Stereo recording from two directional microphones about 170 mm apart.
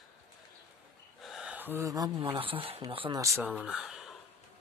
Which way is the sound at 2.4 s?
35° right (ahead or behind).